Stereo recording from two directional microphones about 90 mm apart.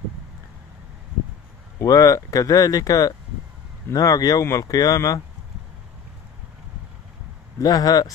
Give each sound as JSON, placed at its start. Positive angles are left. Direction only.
{"t": 1.8, "sound": "speech", "side_deg": 40}
{"t": 7.5, "sound": "speech", "side_deg": 45}